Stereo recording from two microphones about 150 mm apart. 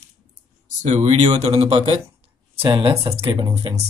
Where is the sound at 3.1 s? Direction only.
40° right (ahead or behind).